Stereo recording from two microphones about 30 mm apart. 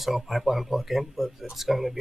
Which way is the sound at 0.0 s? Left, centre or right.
Centre.